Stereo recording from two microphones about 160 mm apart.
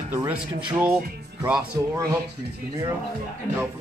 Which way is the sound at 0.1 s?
15° right (ahead or behind).